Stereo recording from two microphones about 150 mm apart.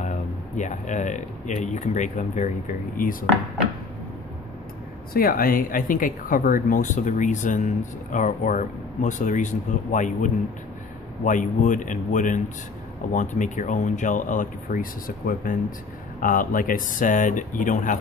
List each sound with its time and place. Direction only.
0.6 s speech: 55° left (ahead or behind)
5.1 s speech: 75° left (ahead or behind)